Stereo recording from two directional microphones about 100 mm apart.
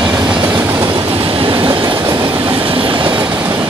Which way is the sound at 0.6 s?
30° right (ahead or behind).